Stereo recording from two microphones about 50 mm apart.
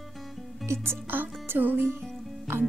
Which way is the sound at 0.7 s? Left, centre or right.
Right.